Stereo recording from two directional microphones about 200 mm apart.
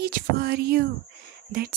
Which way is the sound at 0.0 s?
50° right (ahead or behind).